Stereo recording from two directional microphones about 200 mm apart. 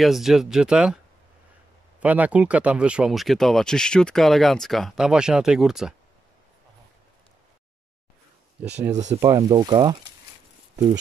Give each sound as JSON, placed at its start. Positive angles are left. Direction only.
{"t": 0.0, "sound": "speech", "side_deg": 0}
{"t": 2.0, "sound": "speech", "side_deg": -5}
{"t": 8.6, "sound": "speech", "side_deg": -5}